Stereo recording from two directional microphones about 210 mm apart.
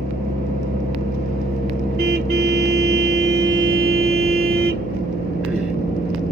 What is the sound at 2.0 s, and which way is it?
Vehicle, 50° right (ahead or behind).